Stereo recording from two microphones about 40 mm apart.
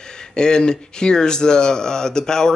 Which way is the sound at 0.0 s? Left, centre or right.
Centre.